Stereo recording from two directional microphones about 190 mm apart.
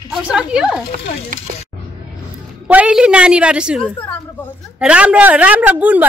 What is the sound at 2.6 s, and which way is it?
A man's voice, 5° right (ahead or behind).